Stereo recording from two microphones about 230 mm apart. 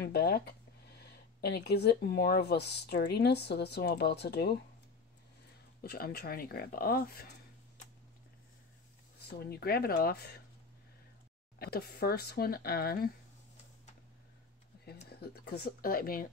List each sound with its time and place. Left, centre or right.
0.0 s speech: left
5.8 s speech: left
9.4 s speech: left
11.6 s speech: left
15.0 s speech: left